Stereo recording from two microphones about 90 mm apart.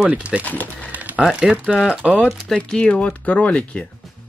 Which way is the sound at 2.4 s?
10° left (ahead or behind).